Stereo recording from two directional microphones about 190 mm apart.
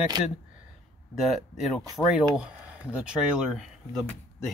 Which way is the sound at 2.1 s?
5° right (ahead or behind).